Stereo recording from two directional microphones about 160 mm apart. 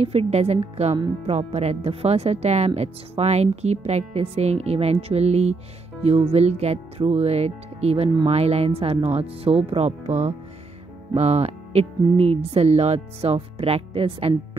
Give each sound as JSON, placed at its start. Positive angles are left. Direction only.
{"t": 0.0, "sound": "speech", "side_deg": -40}